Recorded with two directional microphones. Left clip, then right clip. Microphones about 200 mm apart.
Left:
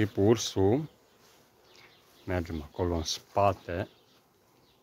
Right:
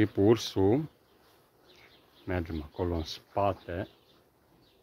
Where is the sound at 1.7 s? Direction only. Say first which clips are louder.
Left 2 dB; 5° left (ahead or behind).